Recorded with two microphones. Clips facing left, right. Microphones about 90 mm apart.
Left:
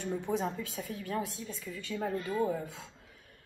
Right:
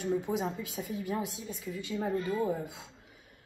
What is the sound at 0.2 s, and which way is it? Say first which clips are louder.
A woman's voice: even; 15° right (ahead or behind).